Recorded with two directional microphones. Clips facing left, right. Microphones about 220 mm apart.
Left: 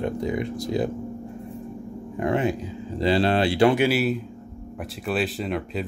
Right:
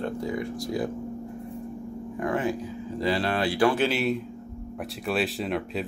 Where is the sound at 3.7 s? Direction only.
10° left (ahead or behind).